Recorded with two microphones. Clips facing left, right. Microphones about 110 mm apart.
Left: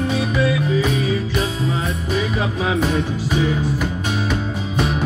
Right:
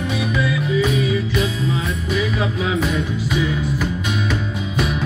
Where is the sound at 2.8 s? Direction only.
40° left (ahead or behind).